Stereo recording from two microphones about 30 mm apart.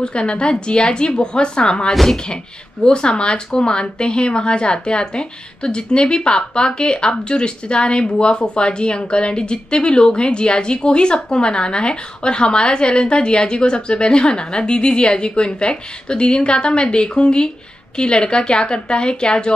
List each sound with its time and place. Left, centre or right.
0.0 s speech: left